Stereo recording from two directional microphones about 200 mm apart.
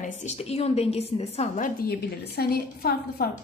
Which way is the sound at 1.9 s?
50° left (ahead or behind).